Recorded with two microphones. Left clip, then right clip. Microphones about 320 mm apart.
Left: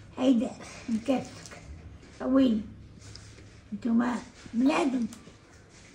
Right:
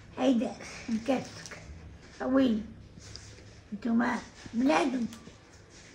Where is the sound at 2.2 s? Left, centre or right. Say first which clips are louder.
Left 2 dB; centre.